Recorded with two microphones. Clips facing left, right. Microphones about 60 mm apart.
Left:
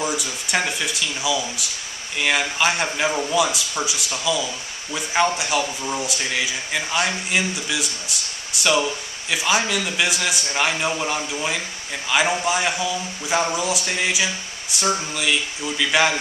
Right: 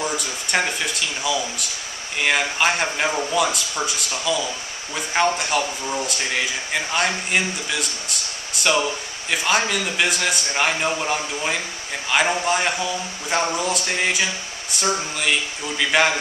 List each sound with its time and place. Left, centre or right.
0.0 s a sound: centre
0.6 s speech: centre
2.1 s speech: centre
10.5 s speech: centre
13.8 s speech: centre